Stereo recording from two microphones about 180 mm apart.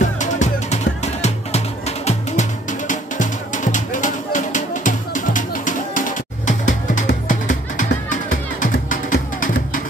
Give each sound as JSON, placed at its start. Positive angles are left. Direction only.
{"t": 0.0, "sound": "music", "side_deg": 40}